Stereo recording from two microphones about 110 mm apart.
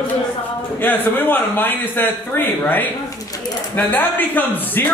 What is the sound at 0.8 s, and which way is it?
A man's voice, 15° left (ahead or behind).